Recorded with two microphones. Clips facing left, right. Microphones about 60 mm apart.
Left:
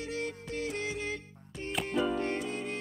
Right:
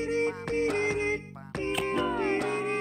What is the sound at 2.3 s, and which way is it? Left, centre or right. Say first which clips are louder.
Music: right 7 dB; right.